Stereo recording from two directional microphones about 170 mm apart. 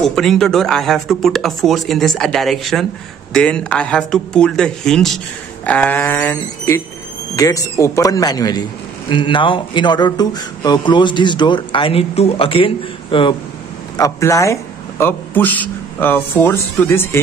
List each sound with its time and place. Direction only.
0.0 s speech: centre (ahead or behind); by 13.4 s 30° left (ahead or behind)
13.9 s a man's voice: 20° left (ahead or behind)